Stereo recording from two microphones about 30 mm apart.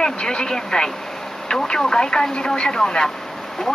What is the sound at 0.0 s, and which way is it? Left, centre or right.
Speech, left.